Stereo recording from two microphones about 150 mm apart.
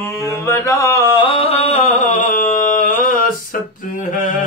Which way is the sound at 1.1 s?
40° left (ahead or behind).